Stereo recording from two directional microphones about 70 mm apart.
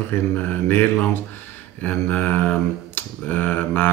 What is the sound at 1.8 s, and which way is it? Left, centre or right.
Finger snapping, left.